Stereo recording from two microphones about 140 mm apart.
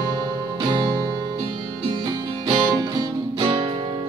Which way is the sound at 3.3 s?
45° right (ahead or behind).